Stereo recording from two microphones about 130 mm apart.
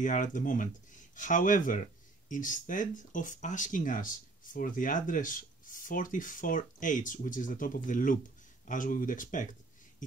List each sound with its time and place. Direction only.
0.0 s speech: 80° left